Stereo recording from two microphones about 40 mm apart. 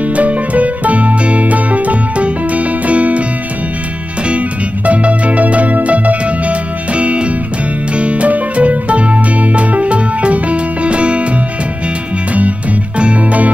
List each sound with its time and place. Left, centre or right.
0.0 s music: right
4.3 s music: right
12.4 s music: right